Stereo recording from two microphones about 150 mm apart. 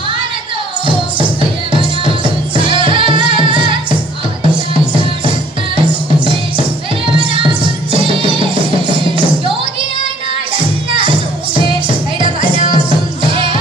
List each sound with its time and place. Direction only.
1.4 s music: 35° right (ahead or behind)
7.1 s music: 35° right (ahead or behind)
11.0 s music: 35° right (ahead or behind)